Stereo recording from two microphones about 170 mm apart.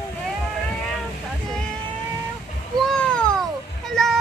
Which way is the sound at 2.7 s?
5° left (ahead or behind).